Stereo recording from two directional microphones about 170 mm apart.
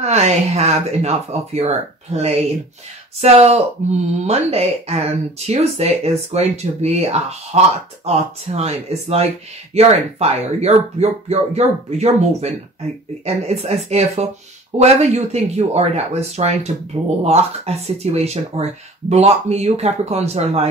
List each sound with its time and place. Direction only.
0.0 s speech: 40° right (ahead or behind)